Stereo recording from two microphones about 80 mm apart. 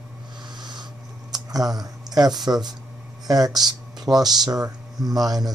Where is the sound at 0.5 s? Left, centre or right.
Right.